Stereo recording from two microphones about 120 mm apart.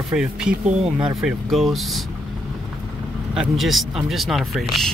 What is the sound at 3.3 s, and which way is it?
Speech, 5° right (ahead or behind).